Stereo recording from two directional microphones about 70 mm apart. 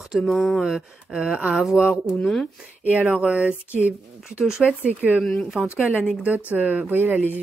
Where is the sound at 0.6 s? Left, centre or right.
Centre.